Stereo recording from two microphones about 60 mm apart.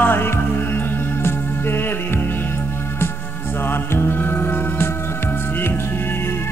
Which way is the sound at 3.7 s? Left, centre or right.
Left.